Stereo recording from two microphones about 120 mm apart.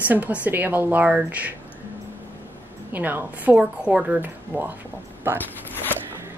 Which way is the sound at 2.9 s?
15° right (ahead or behind).